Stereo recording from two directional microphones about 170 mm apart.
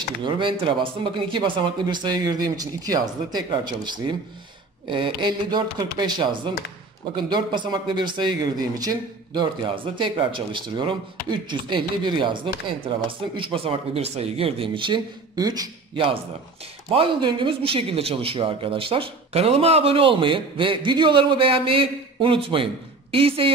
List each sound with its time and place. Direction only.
0.2 s speech: 30° right (ahead or behind)
13.4 s speech: 35° right (ahead or behind)
16.9 s speech: 30° right (ahead or behind)